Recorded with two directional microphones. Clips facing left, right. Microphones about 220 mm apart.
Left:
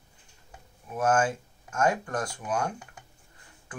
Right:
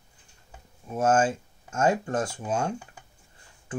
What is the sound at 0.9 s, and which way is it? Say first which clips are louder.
Speech: right 2 dB; 25° right (ahead or behind).